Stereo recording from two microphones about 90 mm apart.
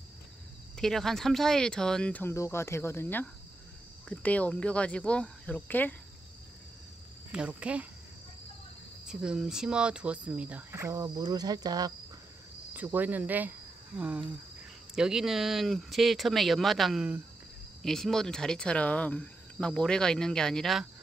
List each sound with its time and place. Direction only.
0.7 s speech: 5° left (ahead or behind)
2.3 s speech: 35° left (ahead or behind)
7.3 s speech: 15° right (ahead or behind)
9.0 s speech: 10° right (ahead or behind)
10.7 s cricket: 35° right (ahead or behind)
12.7 s speech: 20° right (ahead or behind); by 20.8 s 5° left (ahead or behind)